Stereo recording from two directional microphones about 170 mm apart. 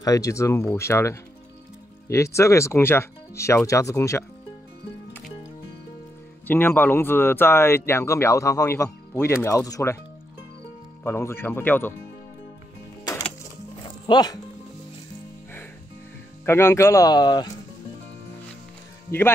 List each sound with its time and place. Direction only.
0.0 s speech: 20° left (ahead or behind)
6.4 s speech: 10° left (ahead or behind)
11.1 s speech: 15° left (ahead or behind)
13.8 s music: 25° left (ahead or behind)
16.4 s speech: 15° left (ahead or behind)
19.0 s speech: 15° left (ahead or behind)